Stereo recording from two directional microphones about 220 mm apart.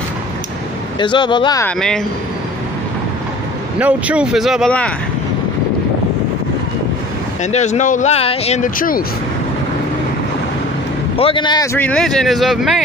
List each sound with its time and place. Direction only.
0.9 s speech: 20° left (ahead or behind)
3.8 s speech: 5° right (ahead or behind)
7.5 s speech: 30° left (ahead or behind)
11.1 s speech: 25° left (ahead or behind); by 12.8 s centre (ahead or behind)